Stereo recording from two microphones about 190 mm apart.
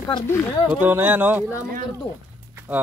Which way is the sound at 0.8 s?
10° right (ahead or behind).